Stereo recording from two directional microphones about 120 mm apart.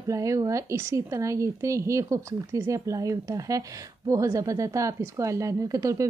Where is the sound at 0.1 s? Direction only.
25° right (ahead or behind).